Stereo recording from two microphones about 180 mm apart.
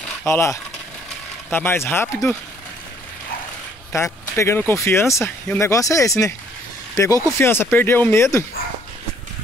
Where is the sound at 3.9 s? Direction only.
15° left (ahead or behind).